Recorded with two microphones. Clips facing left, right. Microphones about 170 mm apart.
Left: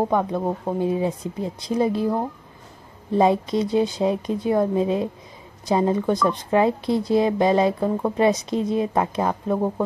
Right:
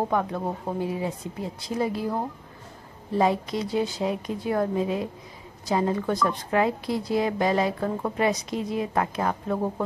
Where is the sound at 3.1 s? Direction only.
25° left (ahead or behind).